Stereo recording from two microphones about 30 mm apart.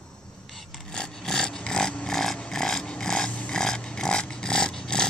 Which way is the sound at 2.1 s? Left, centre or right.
Centre.